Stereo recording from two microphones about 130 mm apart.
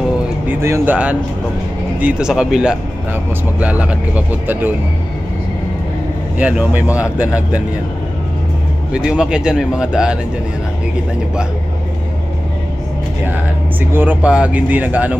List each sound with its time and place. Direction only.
0.5 s speech: 15° right (ahead or behind)
2.0 s speech: 10° right (ahead or behind)
6.3 s speech: 10° right (ahead or behind)
8.9 s speech: 5° right (ahead or behind)
13.9 s speech: 10° right (ahead or behind)